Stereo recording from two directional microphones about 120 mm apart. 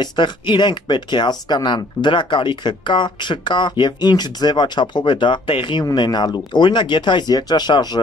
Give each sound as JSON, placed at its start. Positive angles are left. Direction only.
{"t": 0.0, "sound": "speech", "side_deg": 40}